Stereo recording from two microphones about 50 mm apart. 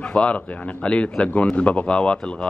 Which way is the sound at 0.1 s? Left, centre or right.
Left.